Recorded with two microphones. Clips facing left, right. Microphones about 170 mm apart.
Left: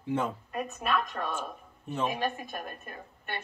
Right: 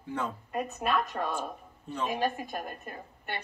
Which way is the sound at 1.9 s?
20° left (ahead or behind).